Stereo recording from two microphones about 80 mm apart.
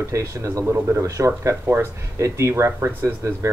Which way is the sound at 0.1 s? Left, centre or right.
Right.